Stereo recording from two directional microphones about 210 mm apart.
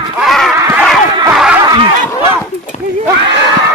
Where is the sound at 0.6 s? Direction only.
10° right (ahead or behind).